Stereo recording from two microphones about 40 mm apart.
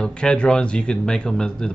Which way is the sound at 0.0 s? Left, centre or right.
Left.